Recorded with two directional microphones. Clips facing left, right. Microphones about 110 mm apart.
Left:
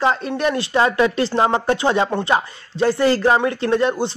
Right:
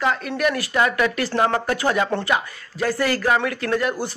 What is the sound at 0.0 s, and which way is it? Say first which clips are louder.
A man's voice: left 3 dB; 30° left (ahead or behind).